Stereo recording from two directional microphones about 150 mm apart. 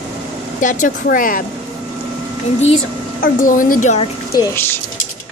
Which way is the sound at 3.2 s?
65° left (ahead or behind).